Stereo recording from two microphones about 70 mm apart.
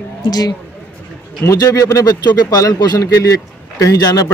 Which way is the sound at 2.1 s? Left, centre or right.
Left.